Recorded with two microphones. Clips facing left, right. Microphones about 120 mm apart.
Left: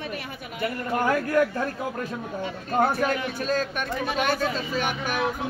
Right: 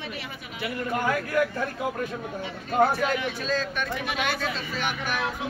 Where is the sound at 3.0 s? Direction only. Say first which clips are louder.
Left 1 dB; 50° left (ahead or behind).